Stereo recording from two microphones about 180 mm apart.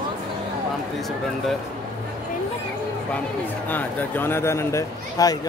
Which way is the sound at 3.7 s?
10° left (ahead or behind).